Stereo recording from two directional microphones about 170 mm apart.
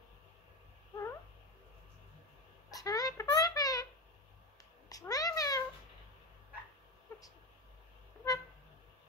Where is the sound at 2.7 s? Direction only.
20° left (ahead or behind).